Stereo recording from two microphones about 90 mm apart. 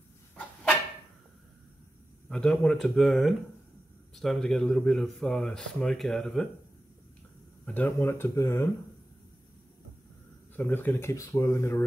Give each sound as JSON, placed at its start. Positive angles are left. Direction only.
{"t": 2.2, "sound": "speech", "side_deg": 5}
{"t": 7.6, "sound": "speech", "side_deg": 20}
{"t": 10.5, "sound": "speech", "side_deg": 20}